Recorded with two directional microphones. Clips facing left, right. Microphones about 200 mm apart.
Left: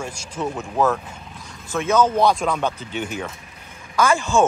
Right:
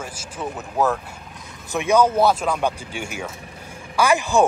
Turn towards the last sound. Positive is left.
turn(degrees=-15)  # may be behind; listen again after turning